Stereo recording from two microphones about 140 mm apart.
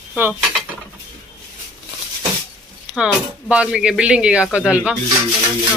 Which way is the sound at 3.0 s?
10° right (ahead or behind).